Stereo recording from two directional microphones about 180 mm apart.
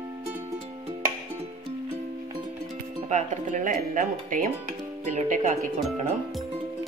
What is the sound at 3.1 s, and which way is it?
Speech, 45° right (ahead or behind).